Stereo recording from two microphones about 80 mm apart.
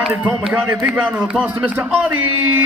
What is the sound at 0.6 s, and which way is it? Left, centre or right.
Speech, centre.